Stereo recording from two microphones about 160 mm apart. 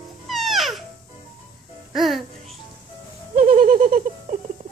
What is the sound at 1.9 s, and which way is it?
Music, centre (ahead or behind).